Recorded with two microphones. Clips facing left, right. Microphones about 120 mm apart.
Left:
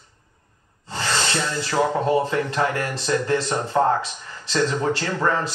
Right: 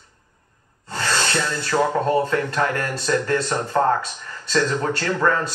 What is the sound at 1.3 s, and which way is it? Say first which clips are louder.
Speech: right 1 dB; 15° left (ahead or behind).